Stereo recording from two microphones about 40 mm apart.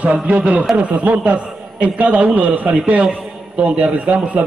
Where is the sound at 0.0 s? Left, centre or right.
Right.